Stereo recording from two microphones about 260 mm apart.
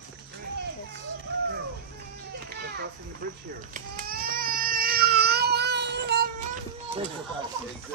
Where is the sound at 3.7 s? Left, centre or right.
Right.